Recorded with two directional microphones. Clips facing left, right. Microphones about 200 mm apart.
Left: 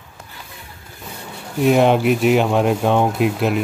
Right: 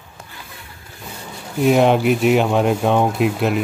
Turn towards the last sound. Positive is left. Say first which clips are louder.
# even
turn(degrees=0)  # may be behind; listen again after turning